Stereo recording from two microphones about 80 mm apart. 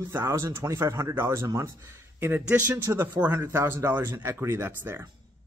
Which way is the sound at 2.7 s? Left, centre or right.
Right.